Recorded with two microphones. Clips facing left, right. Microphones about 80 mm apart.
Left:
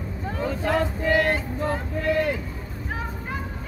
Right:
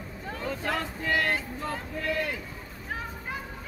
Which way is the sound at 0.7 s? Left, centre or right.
Left.